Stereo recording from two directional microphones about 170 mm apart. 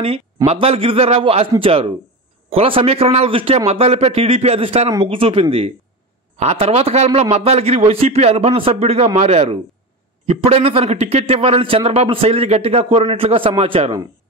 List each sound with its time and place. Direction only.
0.5 s a man's voice: 35° right (ahead or behind)